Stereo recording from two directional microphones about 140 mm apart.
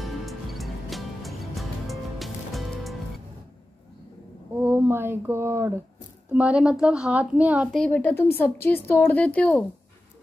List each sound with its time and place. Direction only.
0.0 s music: centre (ahead or behind)
4.6 s speech: 15° right (ahead or behind)
6.3 s a woman's voice: 10° right (ahead or behind)
7.9 s speech: 15° left (ahead or behind)